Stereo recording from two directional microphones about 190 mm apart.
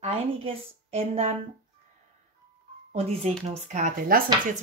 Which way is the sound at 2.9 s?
35° right (ahead or behind).